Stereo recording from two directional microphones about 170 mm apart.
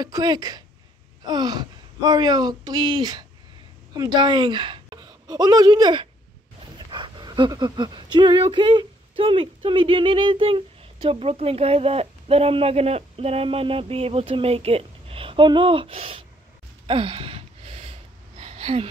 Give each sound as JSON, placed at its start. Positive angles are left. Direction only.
{"t": 0.0, "sound": "a woman's voice", "side_deg": -25}
{"t": 16.8, "sound": "gasp", "side_deg": -30}
{"t": 18.4, "sound": "a sound", "side_deg": -35}